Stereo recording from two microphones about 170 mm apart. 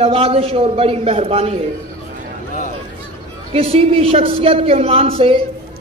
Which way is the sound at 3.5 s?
35° right (ahead or behind).